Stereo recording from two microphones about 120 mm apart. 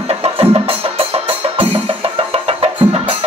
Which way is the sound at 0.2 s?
50° right (ahead or behind).